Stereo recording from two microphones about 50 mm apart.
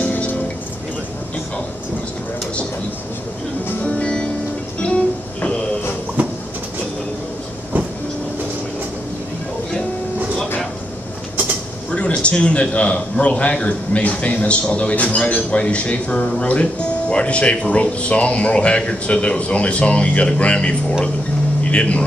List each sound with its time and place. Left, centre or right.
3.8 s music: left
6.2 s bird: right
11.9 s a man's voice: left